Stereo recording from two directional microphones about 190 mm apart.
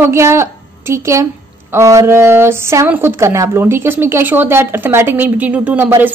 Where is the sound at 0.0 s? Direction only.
15° right (ahead or behind).